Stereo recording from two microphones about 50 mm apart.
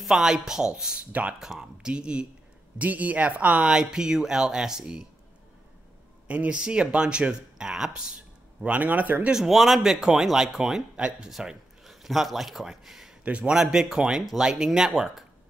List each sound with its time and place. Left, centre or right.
0.0 s speech: centre
0.9 s speech: right
1.4 s speech: centre; by 3.6 s right
3.6 s speech: centre
6.2 s speech: right
6.6 s speech: centre
8.6 s speech: right
9.3 s speech: centre
11.0 s speech: centre
11.2 s speech: centre
13.2 s speech: right
13.6 s speech: centre